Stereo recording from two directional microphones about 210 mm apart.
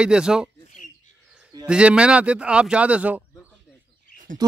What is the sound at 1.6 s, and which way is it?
Speech, 5° right (ahead or behind).